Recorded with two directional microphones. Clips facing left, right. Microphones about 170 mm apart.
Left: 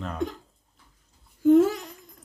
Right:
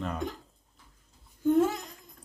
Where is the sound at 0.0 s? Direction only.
Centre (ahead or behind).